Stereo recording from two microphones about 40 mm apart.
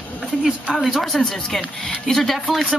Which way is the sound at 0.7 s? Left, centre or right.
Centre.